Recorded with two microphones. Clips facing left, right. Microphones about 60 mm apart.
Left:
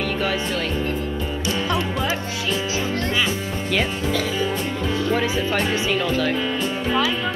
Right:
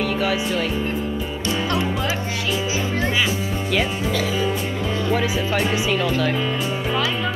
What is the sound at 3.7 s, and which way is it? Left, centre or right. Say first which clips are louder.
Speech: even; centre.